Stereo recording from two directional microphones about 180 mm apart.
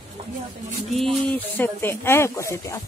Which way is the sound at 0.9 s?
5° left (ahead or behind).